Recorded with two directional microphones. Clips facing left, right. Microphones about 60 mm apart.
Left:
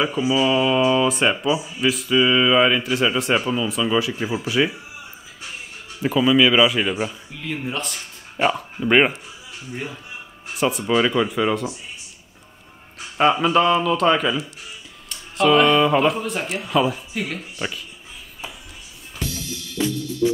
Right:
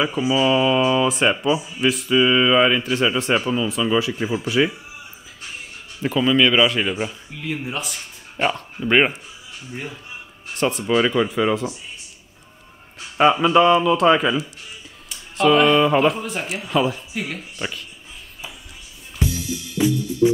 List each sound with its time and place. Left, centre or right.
0.3 s speech: centre
6.0 s speech: centre
13.2 s speech: centre
19.1 s music: right